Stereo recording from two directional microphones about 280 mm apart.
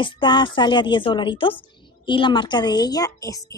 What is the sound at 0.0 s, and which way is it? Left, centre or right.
A woman's voice, centre.